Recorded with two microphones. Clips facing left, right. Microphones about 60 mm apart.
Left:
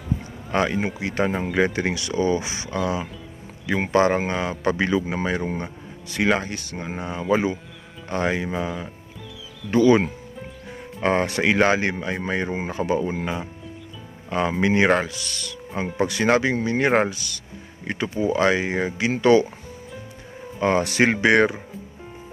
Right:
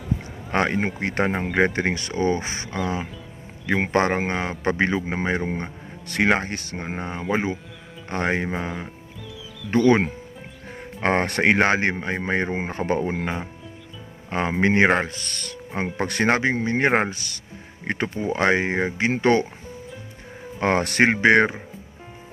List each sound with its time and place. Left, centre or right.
0.5 s speech: right
2.7 s speech: right
3.7 s speech: right
4.1 s speech: right
6.0 s speech: right
6.8 s speech: right
9.7 s speech: right
16.3 s speech: right
17.8 s speech: right
20.6 s speech: right
21.1 s speech: right